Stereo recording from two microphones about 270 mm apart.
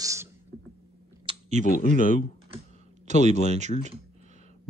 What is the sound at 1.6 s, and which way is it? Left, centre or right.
Speech, left.